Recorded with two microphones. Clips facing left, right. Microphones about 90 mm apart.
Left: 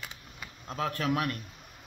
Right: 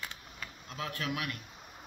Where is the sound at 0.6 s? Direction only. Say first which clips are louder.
Left 7 dB; 40° left (ahead or behind).